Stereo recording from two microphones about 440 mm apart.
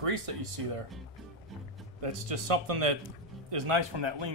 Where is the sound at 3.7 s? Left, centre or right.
Right.